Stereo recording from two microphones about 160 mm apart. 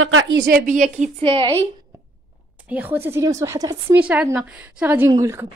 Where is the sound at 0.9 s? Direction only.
40° right (ahead or behind).